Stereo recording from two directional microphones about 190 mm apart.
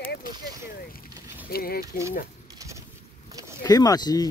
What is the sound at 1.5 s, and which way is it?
Speech, 55° left (ahead or behind).